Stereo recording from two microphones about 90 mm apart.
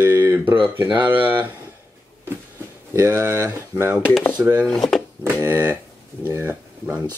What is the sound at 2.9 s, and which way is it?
Speech, 30° right (ahead or behind).